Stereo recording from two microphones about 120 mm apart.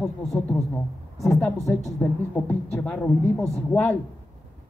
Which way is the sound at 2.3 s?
15° left (ahead or behind).